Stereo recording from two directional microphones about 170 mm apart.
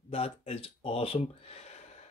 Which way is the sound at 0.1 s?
35° left (ahead or behind).